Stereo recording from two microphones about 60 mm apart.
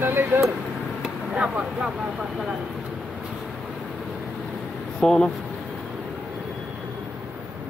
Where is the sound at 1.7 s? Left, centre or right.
Centre.